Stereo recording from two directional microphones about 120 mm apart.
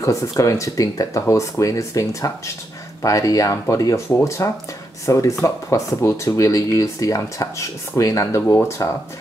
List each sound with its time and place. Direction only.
0.0 s speech: 25° left (ahead or behind)